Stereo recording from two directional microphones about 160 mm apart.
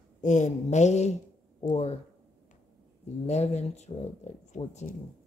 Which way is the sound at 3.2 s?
45° left (ahead or behind).